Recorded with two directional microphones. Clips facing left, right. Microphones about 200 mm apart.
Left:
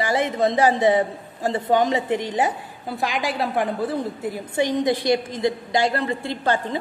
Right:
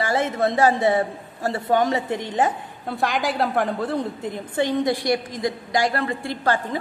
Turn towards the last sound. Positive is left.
turn(degrees=20)  # may be behind; listen again after turning